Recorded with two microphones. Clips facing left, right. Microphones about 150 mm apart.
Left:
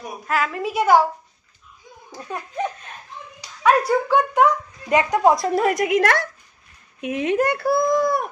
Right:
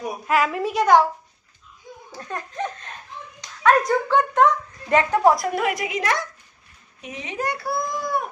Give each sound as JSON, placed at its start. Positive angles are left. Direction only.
{"t": 0.3, "sound": "a woman's voice", "side_deg": 0}
{"t": 2.1, "sound": "speech", "side_deg": 10}
{"t": 5.5, "sound": "a woman's voice", "side_deg": 40}